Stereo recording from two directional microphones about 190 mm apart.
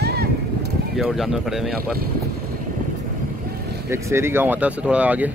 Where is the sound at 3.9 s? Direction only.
15° right (ahead or behind).